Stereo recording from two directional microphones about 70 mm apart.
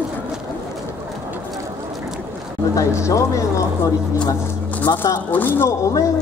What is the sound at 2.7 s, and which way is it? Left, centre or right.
Speech, left.